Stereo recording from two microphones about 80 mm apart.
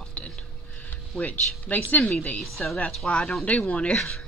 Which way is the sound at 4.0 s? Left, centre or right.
Centre.